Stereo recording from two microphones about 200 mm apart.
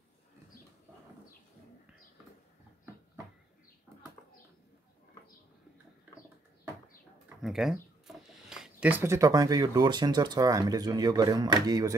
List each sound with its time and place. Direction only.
7.4 s speech: centre (ahead or behind); by 11.9 s 20° right (ahead or behind)